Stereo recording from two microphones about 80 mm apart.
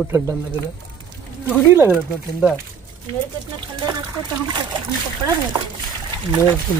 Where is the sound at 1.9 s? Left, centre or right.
Centre.